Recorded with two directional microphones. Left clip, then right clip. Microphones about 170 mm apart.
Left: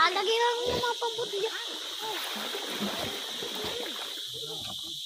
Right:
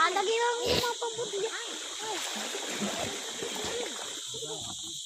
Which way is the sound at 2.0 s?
35° left (ahead or behind).